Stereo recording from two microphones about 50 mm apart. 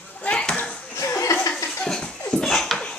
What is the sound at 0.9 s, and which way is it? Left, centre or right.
Chuckle, left.